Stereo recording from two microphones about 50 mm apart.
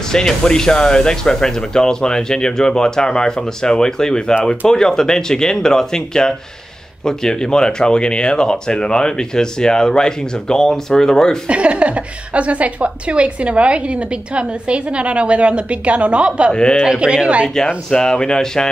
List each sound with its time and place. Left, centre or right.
0.1 s speech: centre
11.4 s a woman's voice: right
17.8 s speech: centre